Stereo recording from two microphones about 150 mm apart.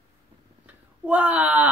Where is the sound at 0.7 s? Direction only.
10° right (ahead or behind).